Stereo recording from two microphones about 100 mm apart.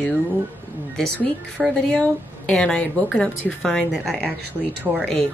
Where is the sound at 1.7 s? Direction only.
10° left (ahead or behind).